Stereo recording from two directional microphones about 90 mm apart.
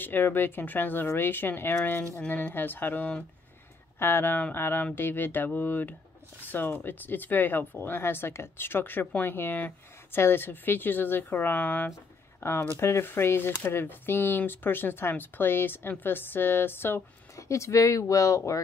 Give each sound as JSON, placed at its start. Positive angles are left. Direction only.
{"t": 0.0, "sound": "speech", "side_deg": 20}